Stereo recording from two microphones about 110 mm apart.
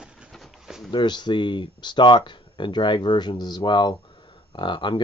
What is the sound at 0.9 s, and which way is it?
Speech, 45° left (ahead or behind).